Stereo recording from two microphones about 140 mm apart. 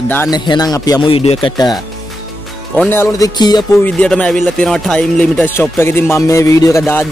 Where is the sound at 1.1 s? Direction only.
45° left (ahead or behind).